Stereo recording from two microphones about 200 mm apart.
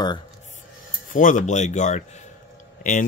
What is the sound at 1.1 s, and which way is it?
Speech, 40° left (ahead or behind).